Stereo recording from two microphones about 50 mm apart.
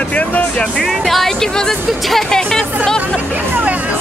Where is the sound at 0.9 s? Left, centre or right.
Centre.